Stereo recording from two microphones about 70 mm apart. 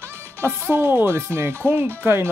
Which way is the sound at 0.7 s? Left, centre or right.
Right.